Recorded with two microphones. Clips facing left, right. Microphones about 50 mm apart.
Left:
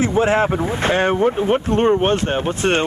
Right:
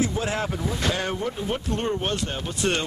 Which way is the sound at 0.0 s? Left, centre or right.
Left.